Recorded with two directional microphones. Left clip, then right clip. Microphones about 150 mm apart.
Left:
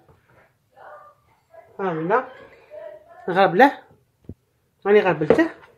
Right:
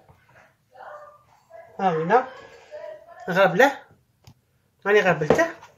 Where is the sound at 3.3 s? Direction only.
45° left (ahead or behind).